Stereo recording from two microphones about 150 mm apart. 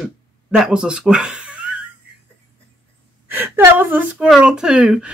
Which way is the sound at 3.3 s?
15° right (ahead or behind).